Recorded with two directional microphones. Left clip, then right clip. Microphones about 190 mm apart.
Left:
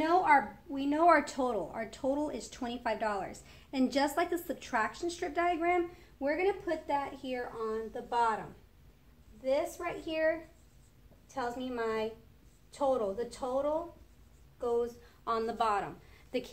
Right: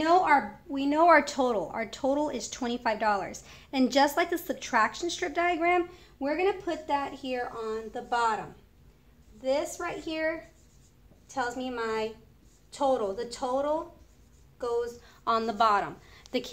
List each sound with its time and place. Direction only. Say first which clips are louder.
0.2 s a child's voice: right 2 dB; 25° right (ahead or behind)
7.2 s speech: right 4 dB; 5° right (ahead or behind)
9.4 s a woman's voice: right 3 dB; 10° right (ahead or behind)
11.3 s a woman's voice: right 4 dB; 10° right (ahead or behind)
12.7 s a child's voice: right 4 dB; 25° right (ahead or behind)
15.2 s a woman's voice: right 6 dB; 30° right (ahead or behind)